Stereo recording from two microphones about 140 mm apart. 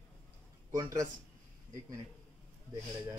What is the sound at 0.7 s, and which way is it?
Speech, 25° right (ahead or behind).